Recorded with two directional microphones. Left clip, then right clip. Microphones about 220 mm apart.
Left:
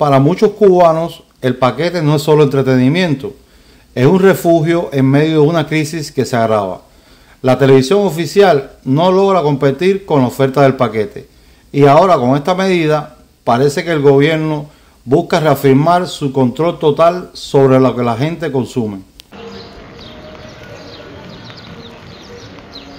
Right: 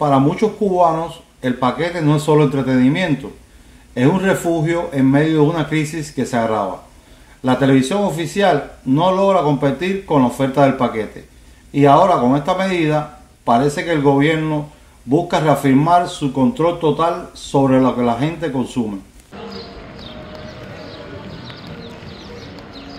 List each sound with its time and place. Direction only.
0.0 s a man's voice: 50° left (ahead or behind)